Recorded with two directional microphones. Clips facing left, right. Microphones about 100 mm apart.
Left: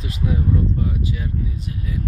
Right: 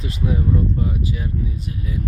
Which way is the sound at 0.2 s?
10° right (ahead or behind).